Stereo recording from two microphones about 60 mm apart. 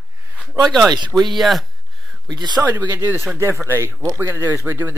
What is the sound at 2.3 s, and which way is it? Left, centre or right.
Speech, right.